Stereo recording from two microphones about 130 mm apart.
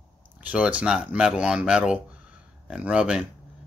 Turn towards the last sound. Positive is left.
turn(degrees=-5)  # may be behind; listen again after turning